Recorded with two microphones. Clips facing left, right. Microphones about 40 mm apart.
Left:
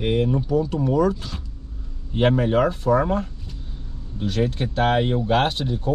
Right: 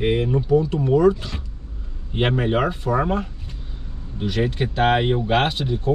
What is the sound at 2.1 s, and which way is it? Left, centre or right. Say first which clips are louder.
Speech: left 2 dB; right.